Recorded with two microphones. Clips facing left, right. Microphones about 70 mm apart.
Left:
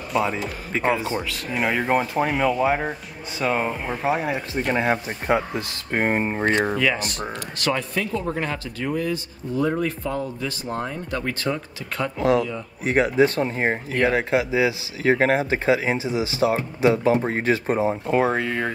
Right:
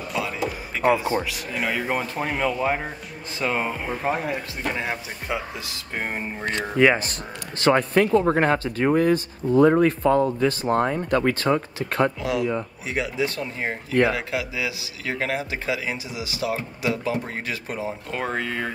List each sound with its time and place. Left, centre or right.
0.2 s speech: left
1.5 s speech: centre
4.7 s speech: left
6.8 s speech: right
7.9 s speech: right
12.2 s speech: left
18.1 s speech: centre